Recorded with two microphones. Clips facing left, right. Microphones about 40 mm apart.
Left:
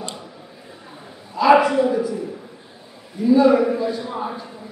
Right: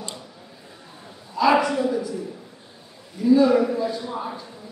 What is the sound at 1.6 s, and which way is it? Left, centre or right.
Speech, left.